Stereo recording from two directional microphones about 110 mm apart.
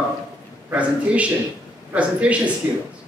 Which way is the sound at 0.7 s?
10° right (ahead or behind).